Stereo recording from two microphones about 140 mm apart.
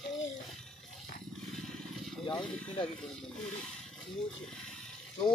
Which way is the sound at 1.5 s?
Centre (ahead or behind).